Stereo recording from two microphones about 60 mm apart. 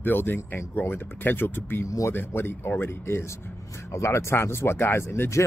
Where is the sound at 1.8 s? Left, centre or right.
Left.